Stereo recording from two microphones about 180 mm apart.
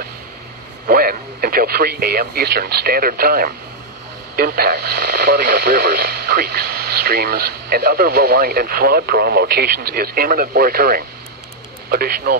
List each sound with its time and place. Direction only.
0.8 s speech: 55° right (ahead or behind)